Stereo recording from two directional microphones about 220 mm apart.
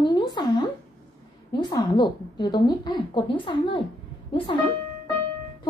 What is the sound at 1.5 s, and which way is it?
A woman's voice, 20° left (ahead or behind).